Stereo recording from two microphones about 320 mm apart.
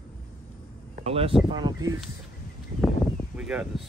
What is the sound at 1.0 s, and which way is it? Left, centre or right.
Speech, centre.